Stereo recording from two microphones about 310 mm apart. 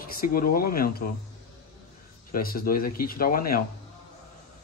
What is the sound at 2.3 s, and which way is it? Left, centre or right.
Speech, left.